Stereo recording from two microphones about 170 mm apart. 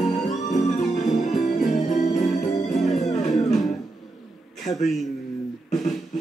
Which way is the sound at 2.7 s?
Centre (ahead or behind).